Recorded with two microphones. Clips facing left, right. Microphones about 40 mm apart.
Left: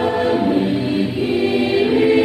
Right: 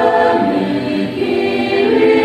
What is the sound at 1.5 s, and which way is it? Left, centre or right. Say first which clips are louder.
Choir: right 2 dB; right.